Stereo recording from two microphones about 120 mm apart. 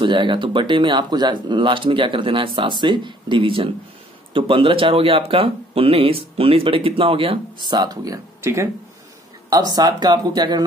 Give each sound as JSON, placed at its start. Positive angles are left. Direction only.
{"t": 0.0, "sound": "speech", "side_deg": -40}
{"t": 9.5, "sound": "speech", "side_deg": -35}